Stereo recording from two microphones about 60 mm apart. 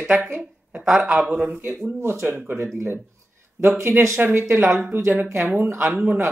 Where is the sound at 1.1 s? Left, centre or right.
Right.